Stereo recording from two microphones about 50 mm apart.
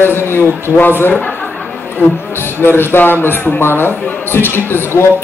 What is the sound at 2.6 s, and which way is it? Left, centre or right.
A man's voice, left.